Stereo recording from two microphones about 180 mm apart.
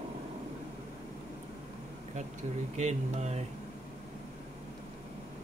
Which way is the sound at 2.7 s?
40° right (ahead or behind).